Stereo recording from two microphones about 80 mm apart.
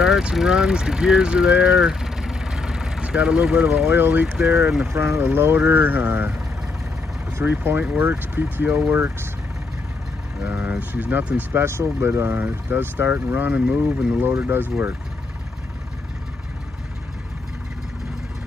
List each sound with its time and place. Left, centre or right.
0.0 s speech: centre
4.6 s speech: centre
4.9 s speech: right
5.2 s speech: right
7.3 s speech: right
10.6 s speech: centre
11.6 s speech: right